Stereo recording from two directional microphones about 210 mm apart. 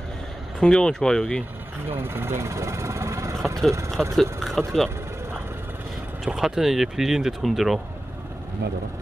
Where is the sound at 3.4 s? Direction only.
Centre (ahead or behind).